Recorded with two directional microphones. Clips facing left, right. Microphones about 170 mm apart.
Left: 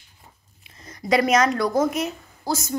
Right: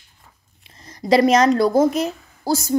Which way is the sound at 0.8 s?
30° right (ahead or behind).